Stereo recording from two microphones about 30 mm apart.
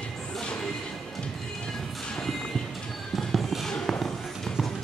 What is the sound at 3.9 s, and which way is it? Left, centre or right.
Music, centre.